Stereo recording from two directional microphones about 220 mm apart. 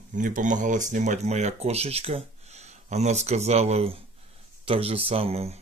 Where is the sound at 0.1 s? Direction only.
35° right (ahead or behind).